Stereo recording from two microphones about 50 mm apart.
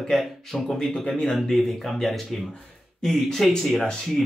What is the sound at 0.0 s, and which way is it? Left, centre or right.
Speech, centre.